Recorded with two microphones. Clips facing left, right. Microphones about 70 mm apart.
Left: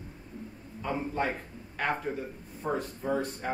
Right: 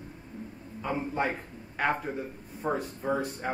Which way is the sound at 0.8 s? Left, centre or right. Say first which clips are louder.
Right 1 dB; centre.